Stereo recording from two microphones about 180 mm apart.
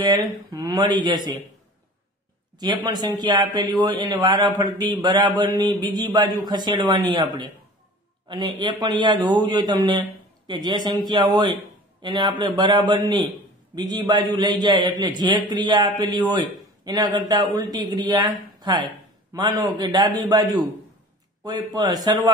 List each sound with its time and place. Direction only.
0.0 s a man's voice: 20° right (ahead or behind)
2.6 s a man's voice: 25° right (ahead or behind)
19.3 s a man's voice: 25° right (ahead or behind)